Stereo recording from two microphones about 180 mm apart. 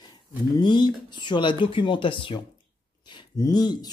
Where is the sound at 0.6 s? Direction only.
25° left (ahead or behind).